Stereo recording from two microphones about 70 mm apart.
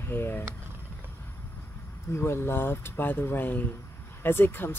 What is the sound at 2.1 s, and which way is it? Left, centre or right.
Speech, left.